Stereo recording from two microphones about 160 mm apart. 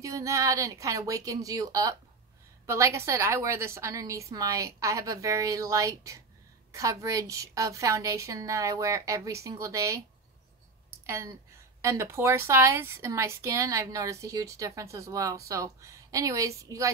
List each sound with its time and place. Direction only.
0.0 s a woman's voice: 20° right (ahead or behind)
11.1 s a woman's voice: 15° right (ahead or behind)